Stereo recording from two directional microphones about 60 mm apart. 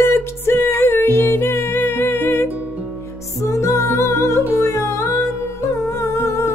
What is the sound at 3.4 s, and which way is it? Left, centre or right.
Music, left.